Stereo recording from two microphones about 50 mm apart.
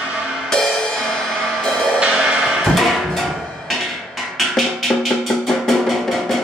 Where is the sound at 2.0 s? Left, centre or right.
Centre.